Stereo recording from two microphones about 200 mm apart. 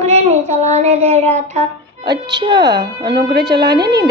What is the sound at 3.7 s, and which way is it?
Speech, 55° right (ahead or behind).